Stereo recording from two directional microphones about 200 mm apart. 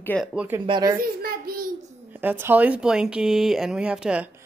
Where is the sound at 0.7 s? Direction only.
20° right (ahead or behind).